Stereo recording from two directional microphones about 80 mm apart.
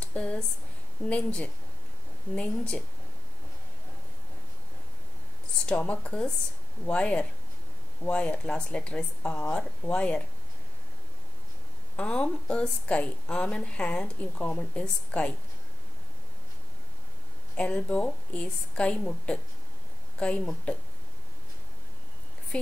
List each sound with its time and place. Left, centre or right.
0.0 s a sound: centre
1.0 s a woman's voice: centre
5.7 s a woman's voice: centre
12.0 s a woman's voice: centre
17.6 s a woman's voice: centre